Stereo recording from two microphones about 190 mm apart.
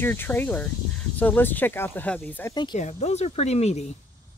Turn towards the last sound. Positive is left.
turn(degrees=35)  # may be behind; listen again after turning